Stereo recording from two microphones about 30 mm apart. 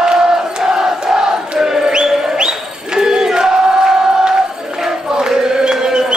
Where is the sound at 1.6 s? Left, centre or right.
Centre.